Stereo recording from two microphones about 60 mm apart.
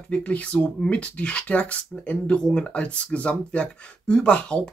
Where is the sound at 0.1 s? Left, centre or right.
Left.